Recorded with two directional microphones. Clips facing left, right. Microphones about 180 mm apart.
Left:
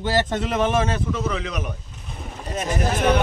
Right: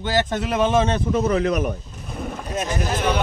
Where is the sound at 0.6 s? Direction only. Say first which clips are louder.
Right 4 dB; 20° right (ahead or behind).